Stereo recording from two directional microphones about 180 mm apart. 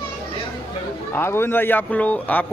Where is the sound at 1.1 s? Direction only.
10° left (ahead or behind).